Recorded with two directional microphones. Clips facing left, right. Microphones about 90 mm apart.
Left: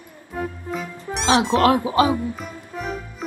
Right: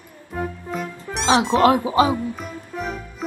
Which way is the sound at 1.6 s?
25° right (ahead or behind).